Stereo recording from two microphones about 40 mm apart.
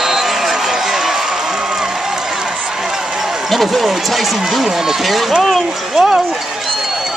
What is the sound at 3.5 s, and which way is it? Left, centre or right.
Speech, centre.